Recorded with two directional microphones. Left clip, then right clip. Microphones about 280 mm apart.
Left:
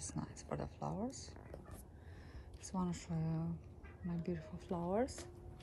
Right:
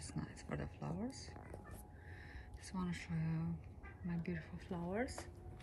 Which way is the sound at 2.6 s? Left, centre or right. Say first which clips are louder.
Left 3 dB; centre.